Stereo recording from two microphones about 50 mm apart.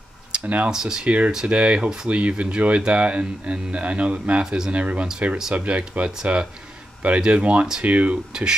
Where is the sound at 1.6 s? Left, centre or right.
Right.